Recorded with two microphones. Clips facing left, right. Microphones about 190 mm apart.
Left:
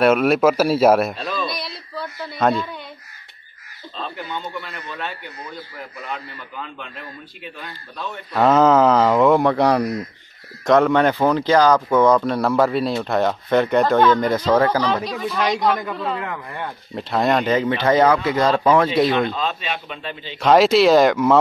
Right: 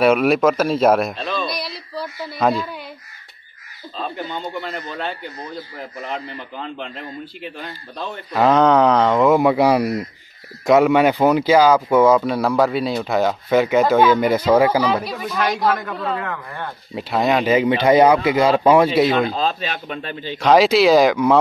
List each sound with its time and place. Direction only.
0.0 s a man's voice: centre (ahead or behind)
4.6 s a man's voice: 35° right (ahead or behind)
6.6 s a man's voice: 30° right (ahead or behind)
8.3 s speech: centre (ahead or behind)
19.3 s a man's voice: 35° right (ahead or behind)
20.3 s speech: centre (ahead or behind)